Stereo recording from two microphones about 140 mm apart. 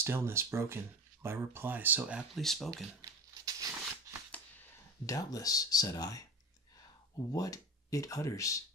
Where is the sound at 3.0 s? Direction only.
25° right (ahead or behind).